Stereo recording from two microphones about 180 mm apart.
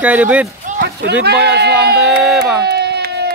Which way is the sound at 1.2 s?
65° right (ahead or behind).